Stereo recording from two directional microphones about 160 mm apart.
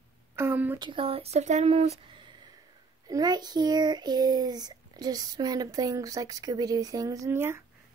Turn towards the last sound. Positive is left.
turn(degrees=-15)  # may be behind; listen again after turning